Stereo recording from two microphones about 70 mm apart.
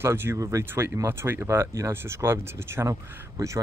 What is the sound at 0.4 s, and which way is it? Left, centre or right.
Speech, right.